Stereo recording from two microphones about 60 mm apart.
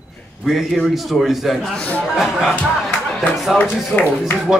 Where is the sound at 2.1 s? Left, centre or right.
Centre.